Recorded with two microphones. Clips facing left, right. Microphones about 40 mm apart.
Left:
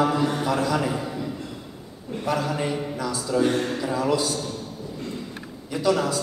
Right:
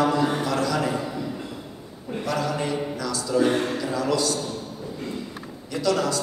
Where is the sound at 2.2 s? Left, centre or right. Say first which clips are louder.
Left 1 dB; centre.